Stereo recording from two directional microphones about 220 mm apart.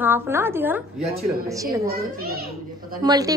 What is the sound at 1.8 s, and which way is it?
A child's voice, 45° right (ahead or behind).